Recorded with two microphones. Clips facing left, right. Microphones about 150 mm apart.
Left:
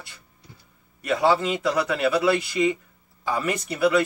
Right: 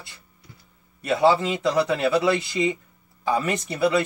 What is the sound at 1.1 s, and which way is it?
Speech, 25° right (ahead or behind).